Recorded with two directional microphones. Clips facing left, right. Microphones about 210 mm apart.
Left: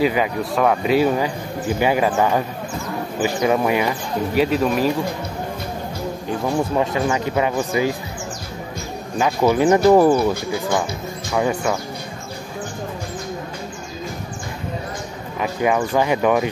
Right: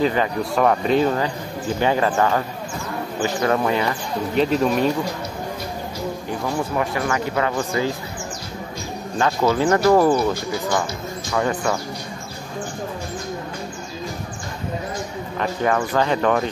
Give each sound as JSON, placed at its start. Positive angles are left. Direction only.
{"t": 0.0, "sound": "speech", "side_deg": 10}
{"t": 6.4, "sound": "speech", "side_deg": 20}
{"t": 9.2, "sound": "speech", "side_deg": 15}
{"t": 11.3, "sound": "speech", "side_deg": 10}
{"t": 15.3, "sound": "speech", "side_deg": 10}